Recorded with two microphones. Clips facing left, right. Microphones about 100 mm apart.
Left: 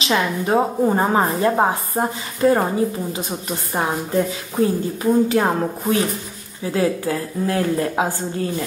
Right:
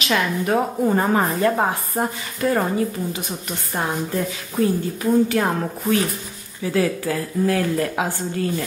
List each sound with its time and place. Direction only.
0.0 s a woman's voice: 25° left (ahead or behind)